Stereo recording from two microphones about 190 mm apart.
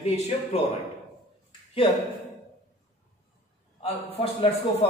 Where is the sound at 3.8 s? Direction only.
30° left (ahead or behind).